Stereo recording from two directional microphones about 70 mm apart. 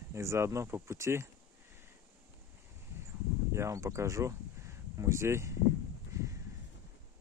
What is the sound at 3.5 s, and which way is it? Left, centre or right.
Speech, right.